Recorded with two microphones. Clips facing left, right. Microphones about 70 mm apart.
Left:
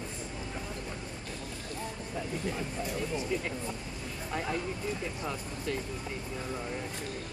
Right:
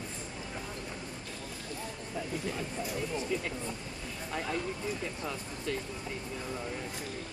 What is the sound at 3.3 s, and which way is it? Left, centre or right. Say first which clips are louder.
Speech: left 1 dB; centre.